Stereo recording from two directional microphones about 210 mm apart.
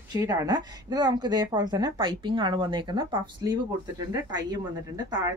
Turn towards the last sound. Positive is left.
turn(degrees=-20)  # may be behind; listen again after turning